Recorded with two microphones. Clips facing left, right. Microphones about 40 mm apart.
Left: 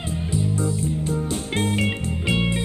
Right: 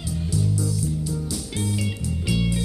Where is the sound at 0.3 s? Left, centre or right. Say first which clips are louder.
Left 2 dB; left.